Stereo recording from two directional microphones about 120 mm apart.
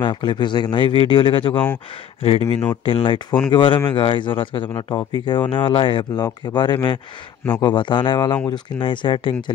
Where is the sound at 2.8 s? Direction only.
50° left (ahead or behind).